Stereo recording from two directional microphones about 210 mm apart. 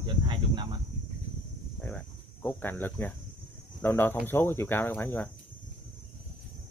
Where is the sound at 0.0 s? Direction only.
20° right (ahead or behind).